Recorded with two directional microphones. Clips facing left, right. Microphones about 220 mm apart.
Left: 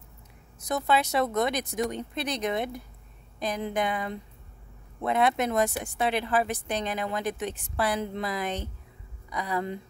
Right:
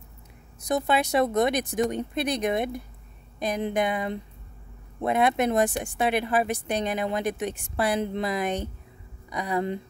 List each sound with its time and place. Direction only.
0.7 s speech: 15° right (ahead or behind)